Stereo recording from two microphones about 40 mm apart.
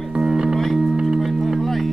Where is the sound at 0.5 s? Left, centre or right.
Centre.